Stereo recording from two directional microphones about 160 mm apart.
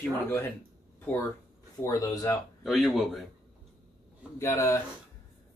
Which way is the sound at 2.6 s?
Centre (ahead or behind).